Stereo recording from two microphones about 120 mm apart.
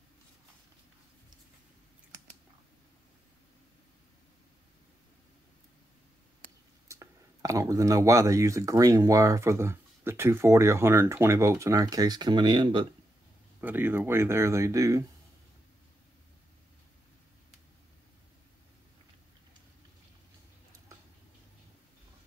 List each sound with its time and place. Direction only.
6.9 s speech: 25° right (ahead or behind); by 12.8 s 40° right (ahead or behind)
13.6 s speech: 15° right (ahead or behind)